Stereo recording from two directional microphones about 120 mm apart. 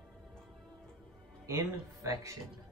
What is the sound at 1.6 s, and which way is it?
Speech, 25° right (ahead or behind).